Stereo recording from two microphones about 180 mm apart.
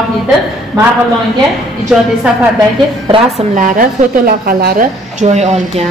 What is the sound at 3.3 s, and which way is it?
A woman's voice, 45° right (ahead or behind).